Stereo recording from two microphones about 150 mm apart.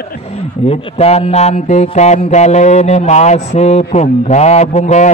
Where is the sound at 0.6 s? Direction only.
45° left (ahead or behind).